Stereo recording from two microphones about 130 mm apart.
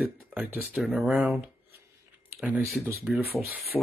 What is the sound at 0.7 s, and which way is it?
Speech, centre (ahead or behind).